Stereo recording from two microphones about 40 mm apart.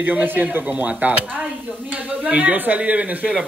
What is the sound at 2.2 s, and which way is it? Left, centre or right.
Speech, right.